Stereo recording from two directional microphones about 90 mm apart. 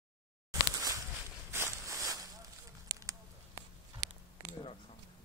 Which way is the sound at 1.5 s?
30° right (ahead or behind).